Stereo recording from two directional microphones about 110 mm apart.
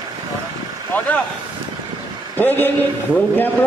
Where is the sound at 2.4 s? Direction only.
20° left (ahead or behind).